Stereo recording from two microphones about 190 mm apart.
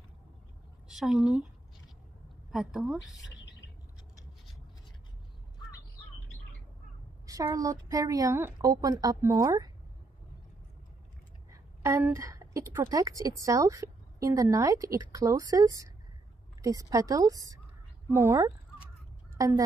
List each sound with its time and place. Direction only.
0.8 s a woman's voice: centre (ahead or behind)
2.5 s a woman's voice: 5° right (ahead or behind)
7.2 s a woman's voice: 20° right (ahead or behind)
11.5 s a woman's voice: 10° right (ahead or behind)